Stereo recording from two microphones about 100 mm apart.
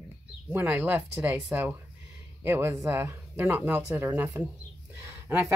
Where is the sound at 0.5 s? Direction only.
20° right (ahead or behind).